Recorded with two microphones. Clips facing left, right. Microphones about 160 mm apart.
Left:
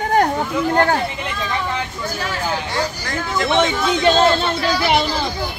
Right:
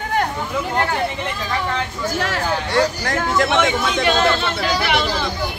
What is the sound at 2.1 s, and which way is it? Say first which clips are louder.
Speech: right 2 dB; 70° right (ahead or behind).